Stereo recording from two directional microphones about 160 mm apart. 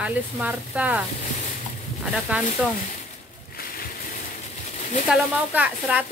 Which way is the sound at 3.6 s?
70° left (ahead or behind).